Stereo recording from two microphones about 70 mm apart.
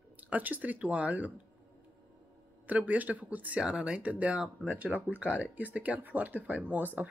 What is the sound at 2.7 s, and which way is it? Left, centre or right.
Speech, right.